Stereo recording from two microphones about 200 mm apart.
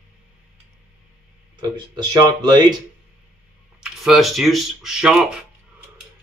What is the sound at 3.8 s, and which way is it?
Speech, centre (ahead or behind).